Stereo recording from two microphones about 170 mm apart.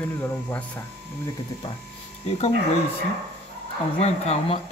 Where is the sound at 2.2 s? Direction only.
40° left (ahead or behind).